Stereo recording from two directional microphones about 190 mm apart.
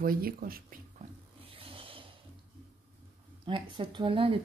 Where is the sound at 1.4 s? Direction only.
30° right (ahead or behind).